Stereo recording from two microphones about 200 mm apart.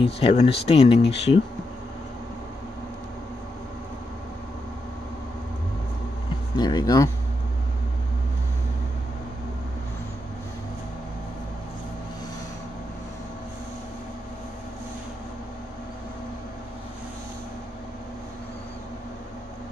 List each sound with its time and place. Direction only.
0.0 s speech: 30° left (ahead or behind)
6.5 s speech: 20° left (ahead or behind)